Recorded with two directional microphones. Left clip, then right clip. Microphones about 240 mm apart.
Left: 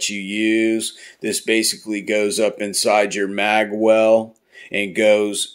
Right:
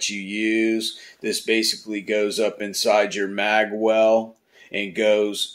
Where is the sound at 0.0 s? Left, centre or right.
Left.